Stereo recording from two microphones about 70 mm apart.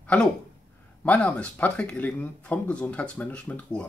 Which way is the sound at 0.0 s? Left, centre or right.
Left.